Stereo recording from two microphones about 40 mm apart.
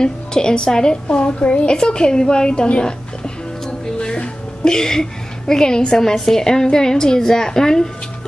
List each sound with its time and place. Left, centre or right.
0.0 s a woman's voice: centre
4.0 s music: left
5.5 s a woman's voice: centre